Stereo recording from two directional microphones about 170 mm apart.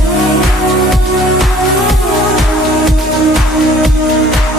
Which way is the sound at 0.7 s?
Centre (ahead or behind).